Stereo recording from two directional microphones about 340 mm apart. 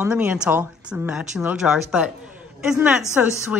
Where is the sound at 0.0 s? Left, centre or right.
Centre.